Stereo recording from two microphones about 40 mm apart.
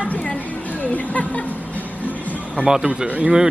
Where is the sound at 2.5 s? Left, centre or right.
Centre.